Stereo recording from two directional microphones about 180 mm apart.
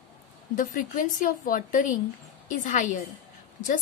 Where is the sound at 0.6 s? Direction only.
45° left (ahead or behind).